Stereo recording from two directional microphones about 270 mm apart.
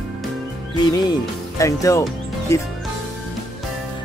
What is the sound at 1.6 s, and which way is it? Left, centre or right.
Speech, centre.